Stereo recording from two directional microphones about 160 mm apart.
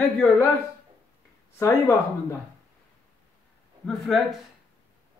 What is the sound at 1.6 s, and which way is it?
Speech, 20° left (ahead or behind).